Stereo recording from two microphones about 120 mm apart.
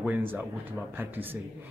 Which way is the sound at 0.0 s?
15° right (ahead or behind).